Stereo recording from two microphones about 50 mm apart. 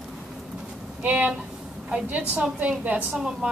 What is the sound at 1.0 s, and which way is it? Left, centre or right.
Speech, right.